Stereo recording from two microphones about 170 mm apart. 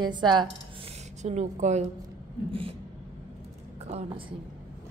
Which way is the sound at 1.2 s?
40° right (ahead or behind).